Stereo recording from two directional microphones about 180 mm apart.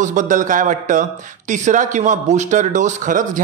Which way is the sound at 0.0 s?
45° right (ahead or behind).